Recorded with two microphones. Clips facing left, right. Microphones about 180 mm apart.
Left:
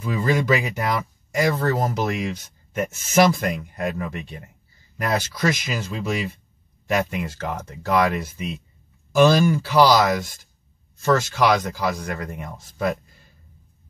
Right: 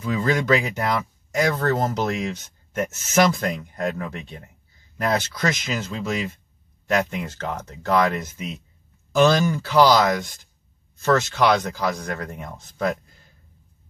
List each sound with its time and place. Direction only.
0.0 s speech: 10° left (ahead or behind)